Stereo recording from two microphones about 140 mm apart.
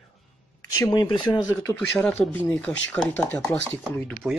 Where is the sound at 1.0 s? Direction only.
35° left (ahead or behind); by 3.5 s 15° left (ahead or behind).